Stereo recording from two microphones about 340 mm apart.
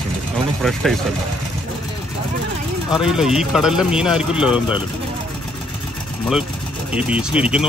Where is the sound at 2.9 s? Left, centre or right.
Centre.